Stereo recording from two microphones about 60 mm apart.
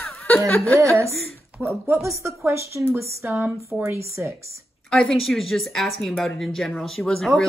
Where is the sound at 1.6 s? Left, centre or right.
Right.